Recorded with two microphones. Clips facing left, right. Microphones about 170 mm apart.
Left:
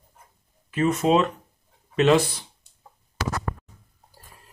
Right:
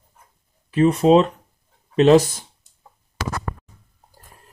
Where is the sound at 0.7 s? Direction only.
35° right (ahead or behind).